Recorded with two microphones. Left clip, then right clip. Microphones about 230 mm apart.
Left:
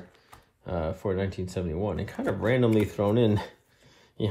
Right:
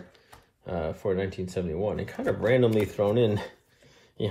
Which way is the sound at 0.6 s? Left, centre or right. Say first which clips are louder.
Right 1 dB; left.